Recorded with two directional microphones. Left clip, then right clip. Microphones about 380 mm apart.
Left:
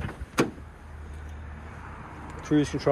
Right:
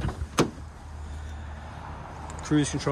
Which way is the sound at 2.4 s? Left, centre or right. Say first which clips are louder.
Left 1 dB; centre.